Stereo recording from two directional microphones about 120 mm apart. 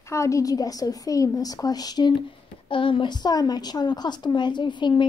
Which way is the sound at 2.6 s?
45° left (ahead or behind).